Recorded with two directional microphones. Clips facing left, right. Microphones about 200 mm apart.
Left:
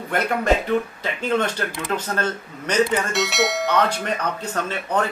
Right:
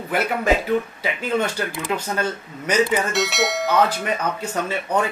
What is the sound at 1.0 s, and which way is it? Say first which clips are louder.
Speech: even; 10° right (ahead or behind).